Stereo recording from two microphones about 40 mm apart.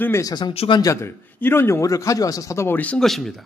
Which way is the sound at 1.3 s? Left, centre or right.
Left.